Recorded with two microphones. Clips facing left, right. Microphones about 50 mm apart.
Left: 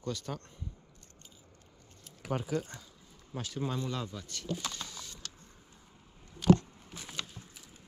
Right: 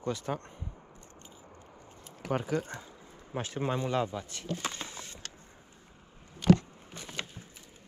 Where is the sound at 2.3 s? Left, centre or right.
Centre.